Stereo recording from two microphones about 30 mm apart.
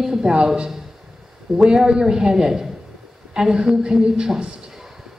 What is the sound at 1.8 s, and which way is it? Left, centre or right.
A woman's voice, right.